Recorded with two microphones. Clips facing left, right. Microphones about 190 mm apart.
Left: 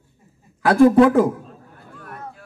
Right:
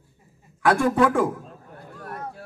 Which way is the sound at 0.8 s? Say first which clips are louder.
Left 9 dB; 25° left (ahead or behind).